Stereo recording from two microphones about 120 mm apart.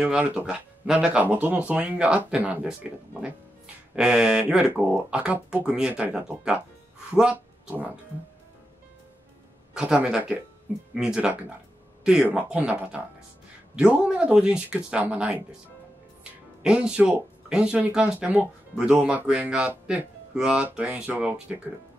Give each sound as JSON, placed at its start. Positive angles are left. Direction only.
{"t": 0.0, "sound": "speech", "side_deg": -10}
{"t": 9.8, "sound": "speech", "side_deg": -10}
{"t": 16.6, "sound": "speech", "side_deg": -5}